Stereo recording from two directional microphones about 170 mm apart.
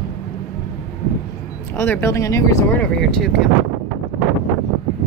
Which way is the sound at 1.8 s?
15° left (ahead or behind).